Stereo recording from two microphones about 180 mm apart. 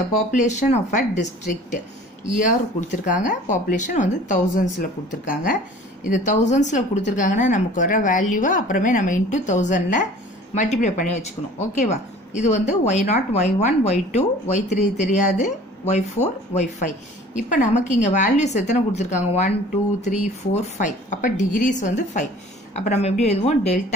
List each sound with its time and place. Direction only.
0.3 s a woman's voice: 45° left (ahead or behind)